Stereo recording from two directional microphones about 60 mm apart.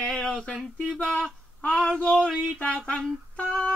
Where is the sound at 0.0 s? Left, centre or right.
Centre.